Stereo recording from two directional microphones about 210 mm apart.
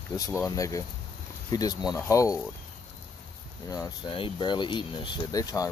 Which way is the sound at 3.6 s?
15° left (ahead or behind).